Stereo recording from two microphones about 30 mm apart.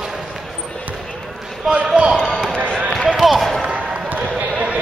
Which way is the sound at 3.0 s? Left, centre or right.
Centre.